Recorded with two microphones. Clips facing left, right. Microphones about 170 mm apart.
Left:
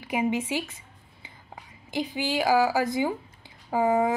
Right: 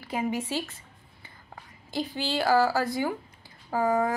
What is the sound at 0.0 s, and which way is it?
Speech, 15° left (ahead or behind).